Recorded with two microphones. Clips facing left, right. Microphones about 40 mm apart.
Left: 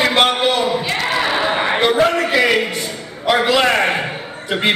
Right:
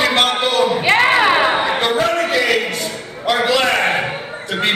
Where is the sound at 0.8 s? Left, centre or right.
Right.